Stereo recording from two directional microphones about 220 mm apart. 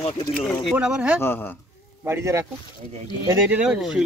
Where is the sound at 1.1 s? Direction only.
10° left (ahead or behind).